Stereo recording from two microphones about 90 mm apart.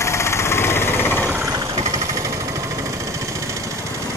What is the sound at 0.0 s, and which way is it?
Engine, 30° left (ahead or behind).